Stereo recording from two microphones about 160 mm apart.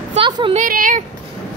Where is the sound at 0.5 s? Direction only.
60° right (ahead or behind).